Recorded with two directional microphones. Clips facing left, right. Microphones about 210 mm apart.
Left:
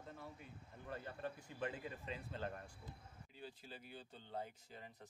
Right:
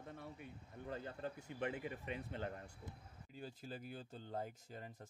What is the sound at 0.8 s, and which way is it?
Speech, 25° right (ahead or behind).